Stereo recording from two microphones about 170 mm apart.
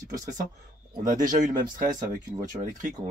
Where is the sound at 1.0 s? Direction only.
50° right (ahead or behind).